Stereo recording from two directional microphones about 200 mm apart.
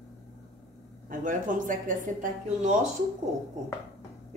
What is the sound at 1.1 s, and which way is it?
Speech, 40° right (ahead or behind).